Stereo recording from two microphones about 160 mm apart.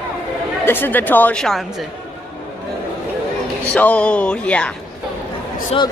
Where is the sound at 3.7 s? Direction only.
5° left (ahead or behind).